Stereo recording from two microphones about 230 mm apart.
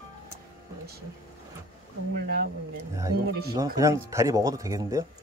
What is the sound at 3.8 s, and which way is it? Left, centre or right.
Speech, centre.